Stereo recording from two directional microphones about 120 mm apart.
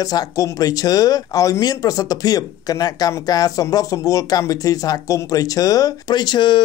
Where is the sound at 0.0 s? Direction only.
30° left (ahead or behind).